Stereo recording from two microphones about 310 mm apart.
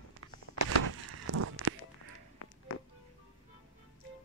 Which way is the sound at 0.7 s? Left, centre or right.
Right.